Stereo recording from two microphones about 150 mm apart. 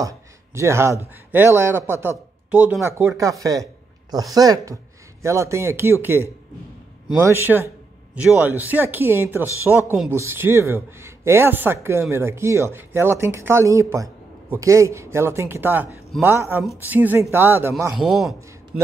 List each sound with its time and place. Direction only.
0.0 s a man's voice: 20° right (ahead or behind)
3.0 s speech: 20° right (ahead or behind)
17.9 s a man's voice: centre (ahead or behind)